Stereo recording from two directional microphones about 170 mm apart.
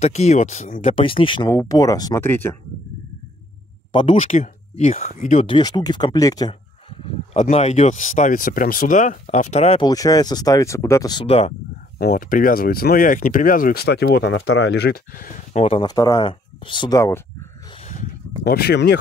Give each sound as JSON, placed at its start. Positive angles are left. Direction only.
{"t": 0.0, "sound": "speech", "side_deg": 40}
{"t": 1.5, "sound": "speech", "side_deg": 20}
{"t": 3.9, "sound": "speech", "side_deg": 35}
{"t": 5.5, "sound": "speech", "side_deg": 25}
{"t": 7.3, "sound": "speech", "side_deg": 40}
{"t": 9.8, "sound": "speech", "side_deg": 20}
{"t": 12.0, "sound": "speech", "side_deg": 60}
{"t": 15.8, "sound": "speech", "side_deg": 25}
{"t": 17.7, "sound": "a sound", "side_deg": 45}
{"t": 18.4, "sound": "speech", "side_deg": 70}